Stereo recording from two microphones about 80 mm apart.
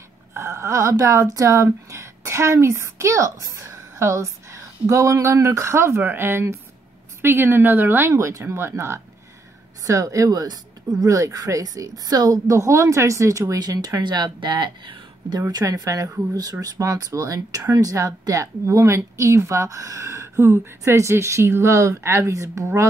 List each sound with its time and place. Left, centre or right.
0.3 s a woman's voice: right
10.4 s a woman's voice: right